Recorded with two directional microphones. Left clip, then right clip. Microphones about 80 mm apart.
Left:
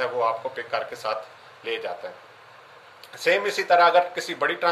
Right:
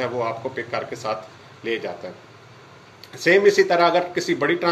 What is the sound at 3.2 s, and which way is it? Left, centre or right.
Speech, left.